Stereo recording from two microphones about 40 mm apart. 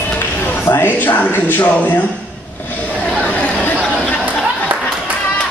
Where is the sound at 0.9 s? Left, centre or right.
Left.